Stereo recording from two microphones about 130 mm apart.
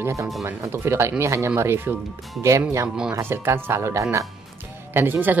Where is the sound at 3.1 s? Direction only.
20° right (ahead or behind).